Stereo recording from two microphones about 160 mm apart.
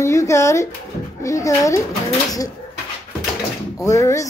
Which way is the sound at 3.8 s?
20° left (ahead or behind).